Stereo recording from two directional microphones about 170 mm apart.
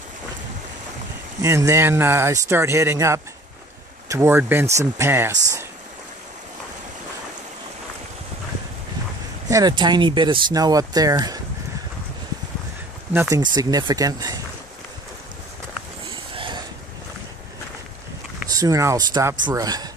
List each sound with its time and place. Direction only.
1.4 s speech: 15° right (ahead or behind)
9.5 s speech: 25° right (ahead or behind)
13.1 s speech: 15° right (ahead or behind)
16.3 s a sound: 25° right (ahead or behind)
18.5 s speech: 20° right (ahead or behind)